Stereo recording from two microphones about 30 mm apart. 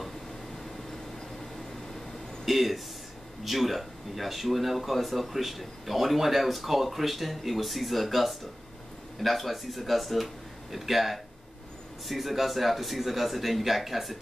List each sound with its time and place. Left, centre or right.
2.4 s speech: centre